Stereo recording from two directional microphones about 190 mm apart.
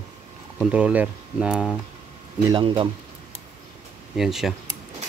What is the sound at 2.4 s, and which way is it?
Speech, 25° right (ahead or behind).